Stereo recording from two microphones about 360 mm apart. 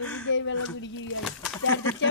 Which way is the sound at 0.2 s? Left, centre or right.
Left.